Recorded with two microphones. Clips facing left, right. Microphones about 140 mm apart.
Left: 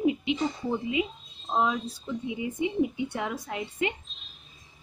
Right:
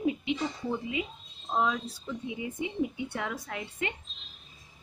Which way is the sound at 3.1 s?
20° left (ahead or behind).